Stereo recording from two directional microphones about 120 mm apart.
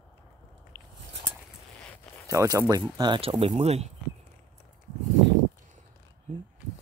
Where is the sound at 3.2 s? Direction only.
55° right (ahead or behind).